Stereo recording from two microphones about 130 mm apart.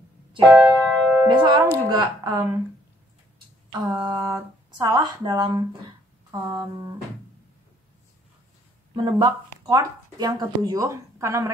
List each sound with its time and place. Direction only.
0.5 s keyboard: 5° right (ahead or behind)
1.2 s speech: 35° right (ahead or behind)
3.8 s speech: 35° right (ahead or behind)
8.9 s speech: 35° right (ahead or behind)